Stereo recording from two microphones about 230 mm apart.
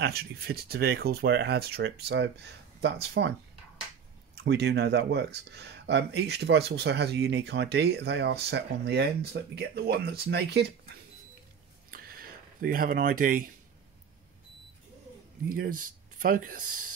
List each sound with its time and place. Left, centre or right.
0.0 s speech: right
4.4 s speech: right
11.9 s a sound: right
15.4 s speech: right